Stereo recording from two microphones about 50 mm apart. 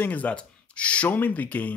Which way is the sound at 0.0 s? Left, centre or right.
Left.